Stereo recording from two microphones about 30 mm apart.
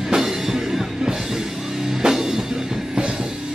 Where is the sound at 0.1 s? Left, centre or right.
Centre.